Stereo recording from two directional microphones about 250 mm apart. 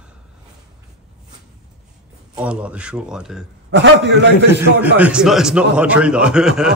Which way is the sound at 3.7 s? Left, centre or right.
Right.